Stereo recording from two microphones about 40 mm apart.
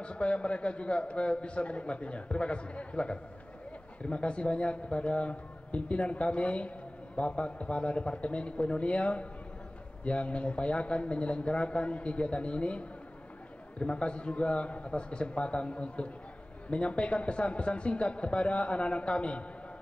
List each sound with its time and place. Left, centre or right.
0.0 s a man's voice: left